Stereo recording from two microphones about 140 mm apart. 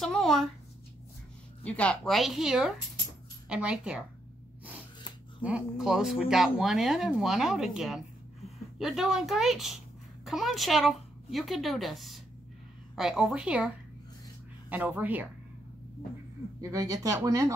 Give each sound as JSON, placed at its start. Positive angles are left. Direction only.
{"t": 0.0, "sound": "speech", "side_deg": 5}
{"t": 1.6, "sound": "speech", "side_deg": 10}
{"t": 5.4, "sound": "speech", "side_deg": -5}
{"t": 16.7, "sound": "speech", "side_deg": -25}